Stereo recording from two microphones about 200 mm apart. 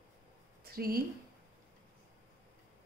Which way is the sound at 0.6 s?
50° right (ahead or behind).